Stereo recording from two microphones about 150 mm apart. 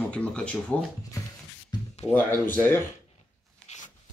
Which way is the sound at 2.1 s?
10° left (ahead or behind).